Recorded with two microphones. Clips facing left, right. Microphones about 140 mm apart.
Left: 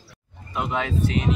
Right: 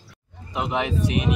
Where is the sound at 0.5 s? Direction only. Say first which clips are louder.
Right 1 dB; 15° right (ahead or behind).